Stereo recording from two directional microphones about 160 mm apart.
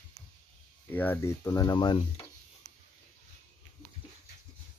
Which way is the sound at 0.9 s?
10° left (ahead or behind).